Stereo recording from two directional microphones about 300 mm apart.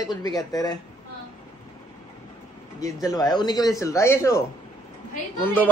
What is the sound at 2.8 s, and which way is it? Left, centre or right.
A man's voice, centre.